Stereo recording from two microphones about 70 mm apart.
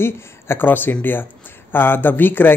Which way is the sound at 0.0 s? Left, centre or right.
Left.